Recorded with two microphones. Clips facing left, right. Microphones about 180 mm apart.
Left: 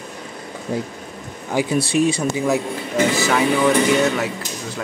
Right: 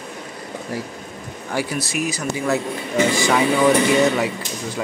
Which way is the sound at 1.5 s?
25° left (ahead or behind).